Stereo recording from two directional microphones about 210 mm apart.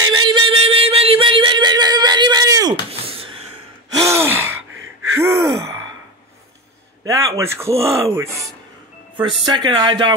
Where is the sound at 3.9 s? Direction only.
15° right (ahead or behind).